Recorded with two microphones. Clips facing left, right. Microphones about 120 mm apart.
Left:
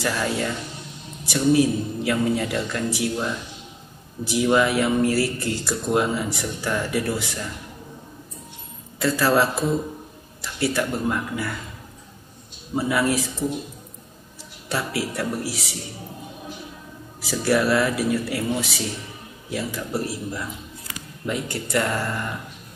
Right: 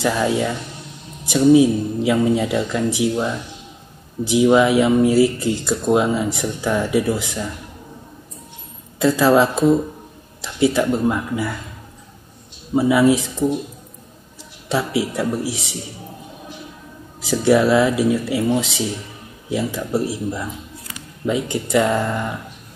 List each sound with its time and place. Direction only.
0.0 s speech: 15° right (ahead or behind)
9.0 s speech: 20° right (ahead or behind)
12.7 s speech: 15° right (ahead or behind)
14.7 s speech: 15° right (ahead or behind)
17.2 s speech: 20° right (ahead or behind)